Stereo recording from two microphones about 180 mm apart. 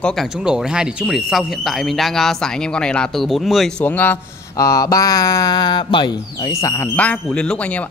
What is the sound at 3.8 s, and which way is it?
Speech, 10° left (ahead or behind).